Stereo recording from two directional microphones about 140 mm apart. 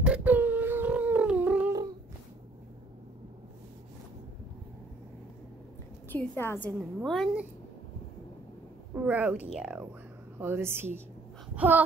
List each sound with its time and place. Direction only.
0.0 s a sound: 10° right (ahead or behind)
6.0 s a woman's voice: 15° left (ahead or behind)
7.0 s speech: 5° right (ahead or behind)
8.9 s speech: 10° right (ahead or behind)
10.4 s speech: 15° right (ahead or behind)
11.5 s a sound: 15° right (ahead or behind)